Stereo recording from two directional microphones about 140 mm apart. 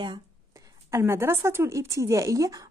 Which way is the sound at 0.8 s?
20° right (ahead or behind).